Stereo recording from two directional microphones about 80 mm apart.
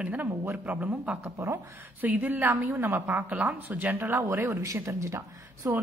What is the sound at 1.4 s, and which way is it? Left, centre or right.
A woman's voice, right.